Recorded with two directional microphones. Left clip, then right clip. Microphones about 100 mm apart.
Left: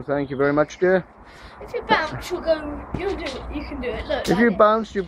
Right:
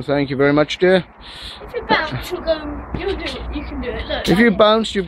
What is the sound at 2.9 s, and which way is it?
Speech, 40° left (ahead or behind).